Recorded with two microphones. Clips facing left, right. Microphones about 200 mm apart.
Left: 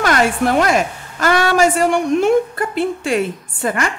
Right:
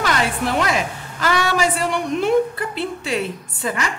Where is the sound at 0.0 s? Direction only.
50° left (ahead or behind).